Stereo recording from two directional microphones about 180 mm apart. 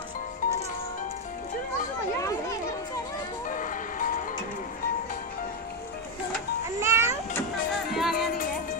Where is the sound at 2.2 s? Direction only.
15° left (ahead or behind).